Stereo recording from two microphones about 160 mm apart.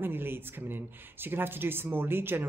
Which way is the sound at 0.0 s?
15° right (ahead or behind).